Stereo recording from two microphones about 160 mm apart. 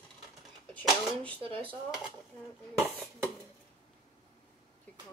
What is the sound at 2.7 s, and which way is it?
Speech, 15° right (ahead or behind).